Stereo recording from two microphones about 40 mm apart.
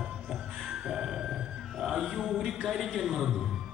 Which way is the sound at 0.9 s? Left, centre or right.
Centre.